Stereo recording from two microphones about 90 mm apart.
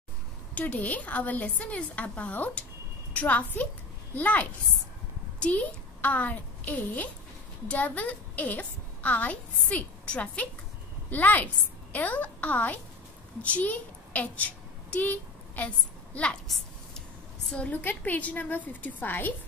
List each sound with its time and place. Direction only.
0.6 s a woman's voice: 15° left (ahead or behind)
16.4 s a sound: centre (ahead or behind)
17.5 s a woman's voice: 15° left (ahead or behind)